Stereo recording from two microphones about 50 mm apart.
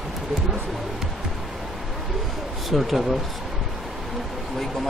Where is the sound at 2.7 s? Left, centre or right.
Centre.